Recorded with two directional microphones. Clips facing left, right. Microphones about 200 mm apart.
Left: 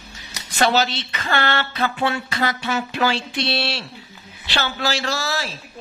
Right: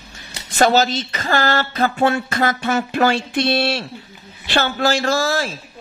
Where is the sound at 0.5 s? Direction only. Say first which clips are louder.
Right 4 dB; 45° right (ahead or behind).